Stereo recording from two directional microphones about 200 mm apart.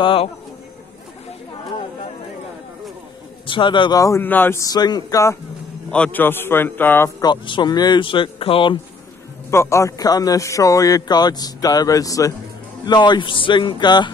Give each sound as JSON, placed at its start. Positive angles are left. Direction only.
{"t": 0.0, "sound": "a man's voice", "side_deg": 25}
{"t": 3.4, "sound": "a man's voice", "side_deg": 25}
{"t": 5.9, "sound": "a man's voice", "side_deg": 5}
{"t": 9.5, "sound": "a man's voice", "side_deg": 15}